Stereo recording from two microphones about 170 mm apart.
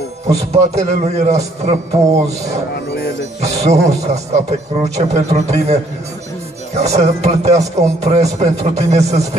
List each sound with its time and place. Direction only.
0.5 s a man's voice: 40° right (ahead or behind)
2.7 s livestock: 70° left (ahead or behind)
3.3 s a man's voice: 40° right (ahead or behind)